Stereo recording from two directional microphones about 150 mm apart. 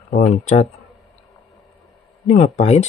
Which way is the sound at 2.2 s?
45° left (ahead or behind).